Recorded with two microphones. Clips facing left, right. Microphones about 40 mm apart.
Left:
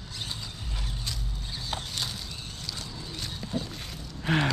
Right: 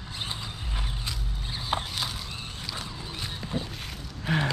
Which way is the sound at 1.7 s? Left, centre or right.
Right.